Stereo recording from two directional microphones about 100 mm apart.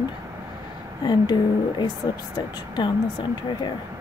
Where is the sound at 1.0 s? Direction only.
45° left (ahead or behind).